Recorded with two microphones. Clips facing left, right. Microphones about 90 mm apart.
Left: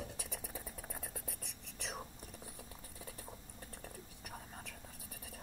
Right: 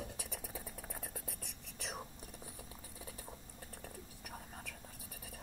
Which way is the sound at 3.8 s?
50° right (ahead or behind).